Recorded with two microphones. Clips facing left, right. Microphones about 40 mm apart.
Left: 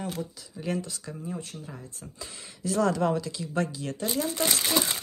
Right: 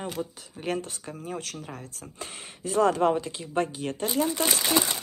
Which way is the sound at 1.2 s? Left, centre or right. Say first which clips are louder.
Right 2 dB; right.